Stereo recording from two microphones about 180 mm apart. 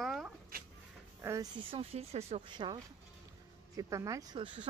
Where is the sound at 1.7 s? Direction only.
35° right (ahead or behind).